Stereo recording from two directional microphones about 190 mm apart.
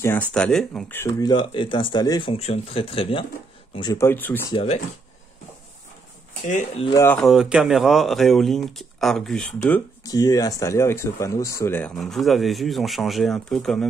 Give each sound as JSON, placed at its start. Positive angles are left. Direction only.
{"t": 0.0, "sound": "speech", "side_deg": 10}
{"t": 4.5, "sound": "speech", "side_deg": 30}
{"t": 6.4, "sound": "speech", "side_deg": 35}
{"t": 6.9, "sound": "speech", "side_deg": 15}
{"t": 7.2, "sound": "speech", "side_deg": 0}
{"t": 10.0, "sound": "speech", "side_deg": 20}